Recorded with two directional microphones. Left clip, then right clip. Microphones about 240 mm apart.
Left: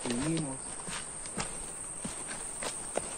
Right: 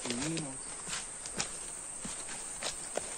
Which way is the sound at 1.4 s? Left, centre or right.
Centre.